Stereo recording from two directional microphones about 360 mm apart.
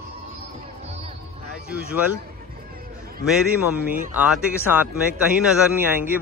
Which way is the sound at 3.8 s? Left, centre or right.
Right.